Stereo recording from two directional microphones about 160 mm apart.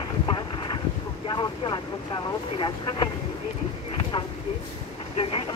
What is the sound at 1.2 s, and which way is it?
Vehicle, 30° left (ahead or behind).